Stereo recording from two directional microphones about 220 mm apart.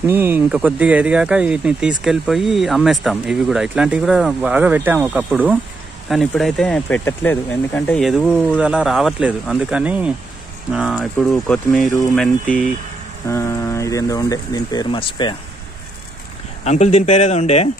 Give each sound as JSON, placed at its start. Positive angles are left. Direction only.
{"t": 0.0, "sound": "speech", "side_deg": -10}
{"t": 13.3, "sound": "speech", "side_deg": 15}
{"t": 16.6, "sound": "speech", "side_deg": 30}